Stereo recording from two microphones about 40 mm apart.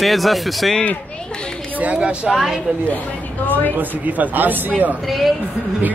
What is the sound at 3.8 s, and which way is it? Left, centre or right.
Speech, right.